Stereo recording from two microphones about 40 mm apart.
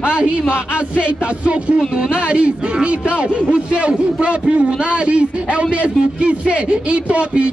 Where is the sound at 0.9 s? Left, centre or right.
Right.